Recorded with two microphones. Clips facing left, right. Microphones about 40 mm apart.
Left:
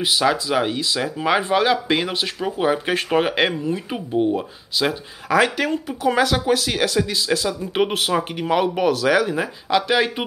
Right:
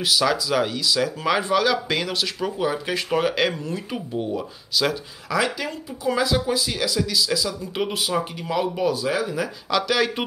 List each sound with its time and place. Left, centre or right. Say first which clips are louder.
0.0 s speech: left 2 dB; left
3.6 s speech: left 4 dB; centre
5.3 s speech: left 6 dB; left
8.9 s speech: left 6 dB; left
9.7 s speech: left 3 dB; left